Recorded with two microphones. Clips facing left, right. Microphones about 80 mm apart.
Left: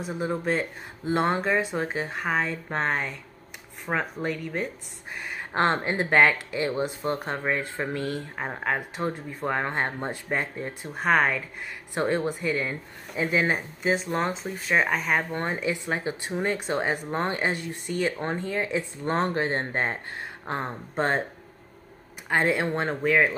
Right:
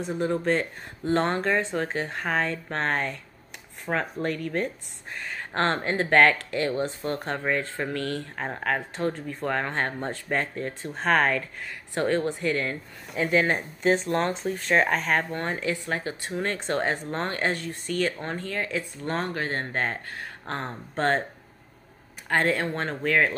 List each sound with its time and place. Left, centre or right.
0.0 s speech: centre
11.9 s speech: centre
15.3 s speech: centre
22.3 s speech: centre